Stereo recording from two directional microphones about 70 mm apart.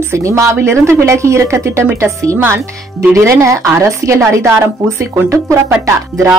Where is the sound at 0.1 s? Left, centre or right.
Right.